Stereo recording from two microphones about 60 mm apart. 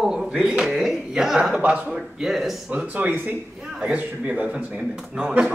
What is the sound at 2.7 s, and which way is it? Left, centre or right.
A man's voice, right.